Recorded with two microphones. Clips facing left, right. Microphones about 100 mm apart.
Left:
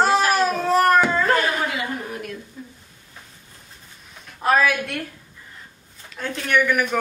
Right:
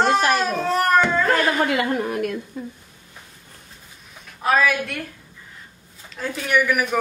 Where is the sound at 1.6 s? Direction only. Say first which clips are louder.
Right 5 dB; 60° right (ahead or behind).